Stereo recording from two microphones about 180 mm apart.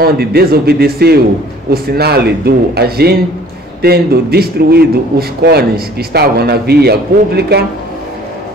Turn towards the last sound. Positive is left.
turn(degrees=-60)  # may be behind; listen again after turning